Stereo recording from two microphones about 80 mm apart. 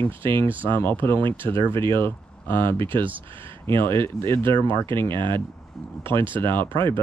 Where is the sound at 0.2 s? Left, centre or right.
Right.